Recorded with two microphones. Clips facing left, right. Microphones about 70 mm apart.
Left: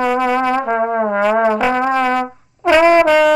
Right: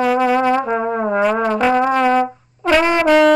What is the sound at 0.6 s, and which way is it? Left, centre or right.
Brass instrument, left.